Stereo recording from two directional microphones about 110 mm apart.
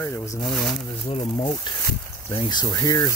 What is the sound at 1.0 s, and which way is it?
Speech, 60° left (ahead or behind).